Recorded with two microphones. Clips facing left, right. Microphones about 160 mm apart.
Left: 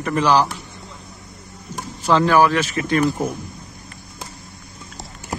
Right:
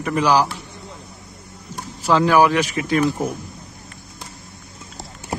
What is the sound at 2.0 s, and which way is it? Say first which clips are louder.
Speech: even; 10° right (ahead or behind).